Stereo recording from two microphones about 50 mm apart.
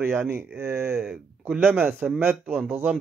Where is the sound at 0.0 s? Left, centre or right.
Right.